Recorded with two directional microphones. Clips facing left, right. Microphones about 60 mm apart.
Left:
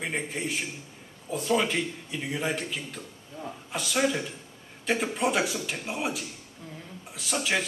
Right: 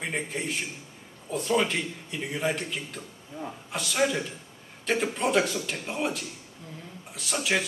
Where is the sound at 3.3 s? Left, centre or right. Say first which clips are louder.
Right 2 dB; centre.